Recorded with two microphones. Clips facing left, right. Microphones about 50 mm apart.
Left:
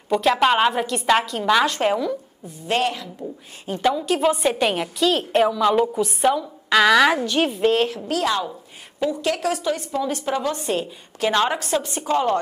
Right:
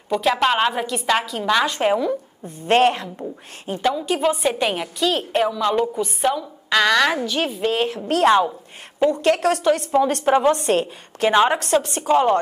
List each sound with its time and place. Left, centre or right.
0.1 s a woman's voice: centre
1.7 s speech: centre
2.4 s a woman's voice: right
4.2 s a woman's voice: centre
8.1 s a woman's voice: right
10.2 s a woman's voice: right
10.5 s a woman's voice: right
11.1 s a woman's voice: right
11.6 s a woman's voice: right
12.1 s speech: centre